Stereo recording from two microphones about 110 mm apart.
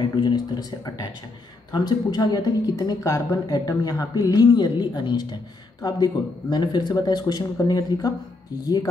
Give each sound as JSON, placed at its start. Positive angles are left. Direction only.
{"t": 0.0, "sound": "a woman's voice", "side_deg": 45}